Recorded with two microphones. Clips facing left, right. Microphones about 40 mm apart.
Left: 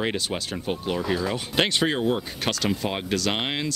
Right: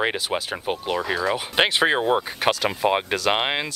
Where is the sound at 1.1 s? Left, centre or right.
Centre.